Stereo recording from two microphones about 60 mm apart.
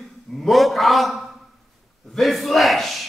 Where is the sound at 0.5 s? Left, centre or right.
Centre.